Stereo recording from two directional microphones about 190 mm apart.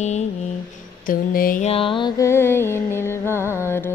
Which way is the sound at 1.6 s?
30° left (ahead or behind).